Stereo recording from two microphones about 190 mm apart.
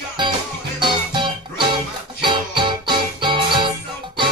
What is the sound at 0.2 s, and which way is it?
Music, 25° right (ahead or behind).